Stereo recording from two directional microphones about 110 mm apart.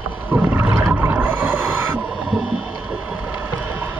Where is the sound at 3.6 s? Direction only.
15° right (ahead or behind).